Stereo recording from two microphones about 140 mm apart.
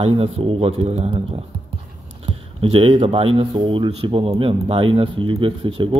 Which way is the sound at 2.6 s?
40° right (ahead or behind).